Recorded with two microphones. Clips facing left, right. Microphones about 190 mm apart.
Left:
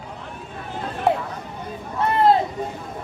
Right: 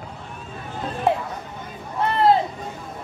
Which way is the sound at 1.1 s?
Centre (ahead or behind).